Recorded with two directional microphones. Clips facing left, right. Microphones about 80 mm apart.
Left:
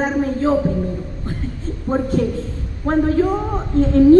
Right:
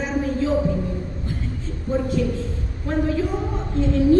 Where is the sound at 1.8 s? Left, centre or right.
Left.